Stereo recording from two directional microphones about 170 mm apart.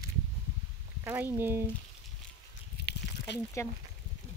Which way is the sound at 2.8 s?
85° left.